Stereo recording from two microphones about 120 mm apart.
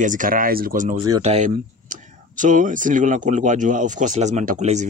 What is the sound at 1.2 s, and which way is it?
Speech, 75° right (ahead or behind).